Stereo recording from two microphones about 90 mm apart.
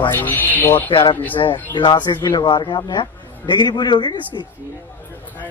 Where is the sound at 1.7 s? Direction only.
55° left (ahead or behind).